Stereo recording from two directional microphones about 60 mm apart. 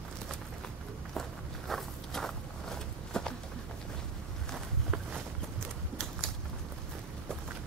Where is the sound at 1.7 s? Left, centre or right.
Centre.